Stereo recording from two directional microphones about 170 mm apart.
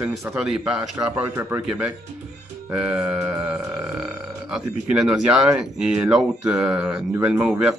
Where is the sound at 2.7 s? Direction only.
5° right (ahead or behind).